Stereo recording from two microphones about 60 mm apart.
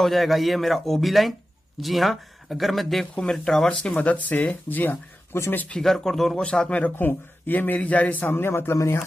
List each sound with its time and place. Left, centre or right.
0.0 s speech: centre
3.8 s speech: left
5.8 s speech: centre
6.7 s a man's voice: left